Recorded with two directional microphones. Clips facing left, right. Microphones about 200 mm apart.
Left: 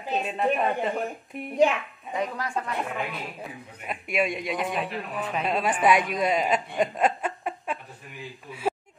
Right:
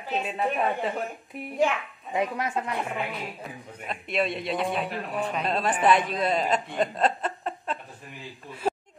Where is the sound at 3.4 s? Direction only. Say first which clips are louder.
Even; 10° left (ahead or behind).